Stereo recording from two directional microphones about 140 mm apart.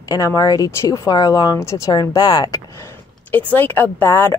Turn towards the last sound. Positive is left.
turn(degrees=15)  # may be behind; listen again after turning